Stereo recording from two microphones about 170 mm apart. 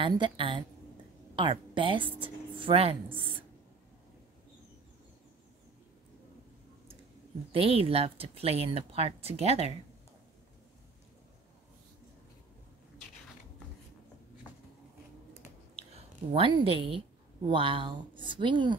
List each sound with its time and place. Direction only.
0.0 s a woman's voice: 30° right (ahead or behind)
3.2 s a sound: 35° right (ahead or behind)
7.5 s speech: 35° right (ahead or behind)
16.3 s a woman's voice: 30° right (ahead or behind)